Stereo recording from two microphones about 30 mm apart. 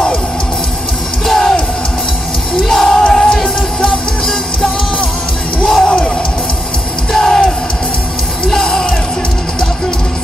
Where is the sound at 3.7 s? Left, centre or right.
Left.